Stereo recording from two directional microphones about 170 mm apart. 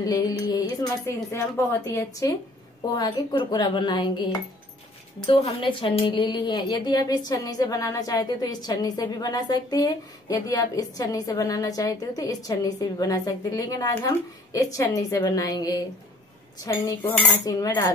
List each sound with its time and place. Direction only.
0.0 s a woman's voice: 25° left (ahead or behind)
1.0 s cutlery: 15° left (ahead or behind)
3.0 s a woman's voice: 25° left (ahead or behind)
16.6 s cutlery: 15° left (ahead or behind)